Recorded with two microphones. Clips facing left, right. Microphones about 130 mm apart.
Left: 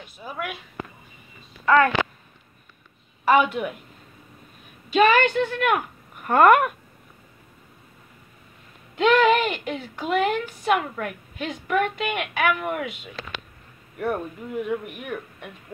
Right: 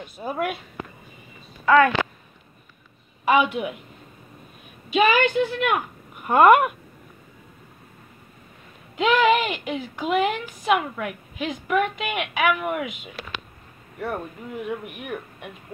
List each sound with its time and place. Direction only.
0.2 s speech: 55° right (ahead or behind)
3.3 s a woman's voice: 10° right (ahead or behind)
4.8 s speech: 5° right (ahead or behind)
8.9 s a woman's voice: 10° right (ahead or behind)
13.9 s speech: centre (ahead or behind)